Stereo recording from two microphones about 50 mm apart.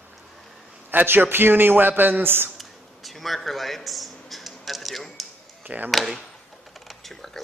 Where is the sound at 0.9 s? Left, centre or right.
Right.